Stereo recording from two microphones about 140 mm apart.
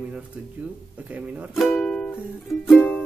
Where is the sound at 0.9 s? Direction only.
10° right (ahead or behind).